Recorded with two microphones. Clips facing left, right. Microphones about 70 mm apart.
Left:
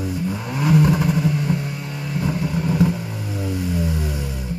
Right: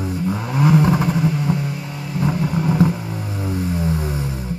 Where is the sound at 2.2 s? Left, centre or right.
Right.